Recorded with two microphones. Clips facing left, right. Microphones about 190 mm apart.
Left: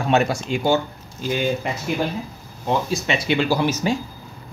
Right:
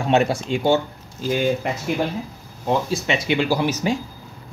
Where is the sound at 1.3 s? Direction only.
45° right (ahead or behind).